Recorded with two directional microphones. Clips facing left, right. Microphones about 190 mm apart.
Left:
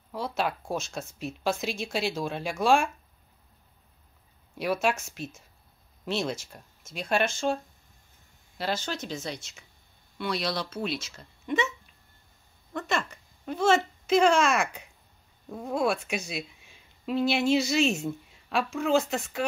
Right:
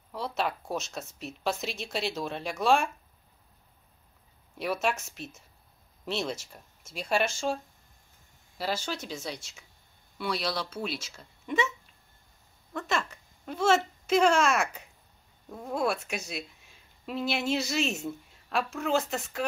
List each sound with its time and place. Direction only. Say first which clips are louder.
0.4 s speech: left 1 dB; centre (ahead or behind)
4.8 s speech: left 3 dB; centre (ahead or behind)
8.5 s speech: left 1 dB; 5° right (ahead or behind)
12.7 s a sound: left 1 dB; centre (ahead or behind)
15.5 s speech: left 2 dB; centre (ahead or behind)